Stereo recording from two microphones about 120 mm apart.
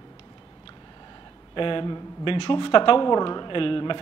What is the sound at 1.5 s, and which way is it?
A woman's voice, 45° left (ahead or behind).